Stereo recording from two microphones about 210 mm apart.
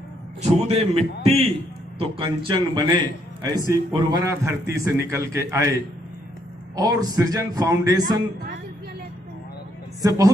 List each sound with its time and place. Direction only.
0.4 s a man's voice: 30° right (ahead or behind); by 5.7 s 15° right (ahead or behind)
6.8 s a man's voice: 15° right (ahead or behind)
10.0 s a man's voice: 15° right (ahead or behind)